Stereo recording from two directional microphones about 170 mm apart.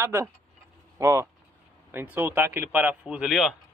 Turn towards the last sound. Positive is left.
turn(degrees=0)  # may be behind; listen again after turning